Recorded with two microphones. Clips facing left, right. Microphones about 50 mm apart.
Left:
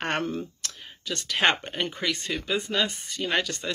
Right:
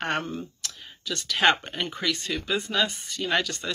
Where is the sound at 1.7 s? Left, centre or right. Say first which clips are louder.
Even; left.